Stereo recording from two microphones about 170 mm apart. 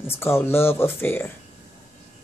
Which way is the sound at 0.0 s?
15° left (ahead or behind).